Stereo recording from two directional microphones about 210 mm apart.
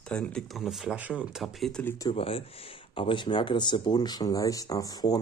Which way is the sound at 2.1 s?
25° left (ahead or behind).